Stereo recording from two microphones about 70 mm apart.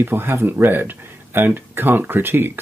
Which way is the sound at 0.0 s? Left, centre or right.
Right.